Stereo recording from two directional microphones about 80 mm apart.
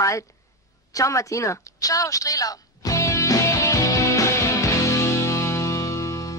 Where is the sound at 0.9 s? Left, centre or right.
Left.